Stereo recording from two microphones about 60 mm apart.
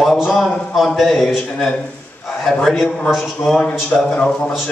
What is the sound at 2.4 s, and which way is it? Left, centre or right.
A man's voice, centre.